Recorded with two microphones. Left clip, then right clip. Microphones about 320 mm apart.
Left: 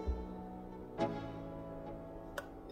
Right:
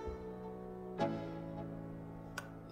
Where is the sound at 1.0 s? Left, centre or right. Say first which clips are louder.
Even; centre.